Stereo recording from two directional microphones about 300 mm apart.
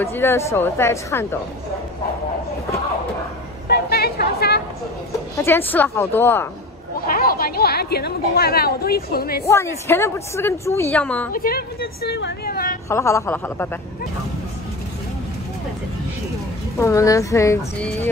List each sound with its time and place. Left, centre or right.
0.0 s a woman's voice: centre
3.6 s a sound: left
5.4 s a woman's voice: centre
7.1 s a woman's voice: left
9.5 s a woman's voice: centre
11.3 s a woman's voice: left
12.8 s a woman's voice: centre
16.8 s a woman's voice: centre